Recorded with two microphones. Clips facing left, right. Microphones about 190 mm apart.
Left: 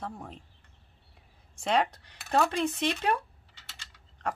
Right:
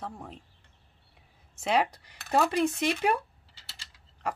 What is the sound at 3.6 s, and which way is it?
Mechanisms, 30° right (ahead or behind).